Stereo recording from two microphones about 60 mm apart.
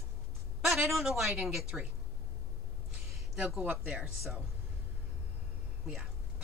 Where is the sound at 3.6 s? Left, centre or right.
Right.